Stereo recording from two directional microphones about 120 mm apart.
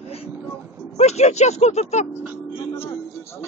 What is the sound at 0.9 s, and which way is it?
Speech, 65° left (ahead or behind).